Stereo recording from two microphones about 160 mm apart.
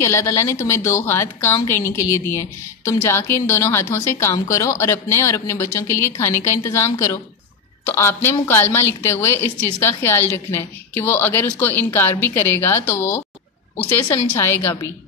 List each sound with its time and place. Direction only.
0.0 s a woman's voice: 20° left (ahead or behind)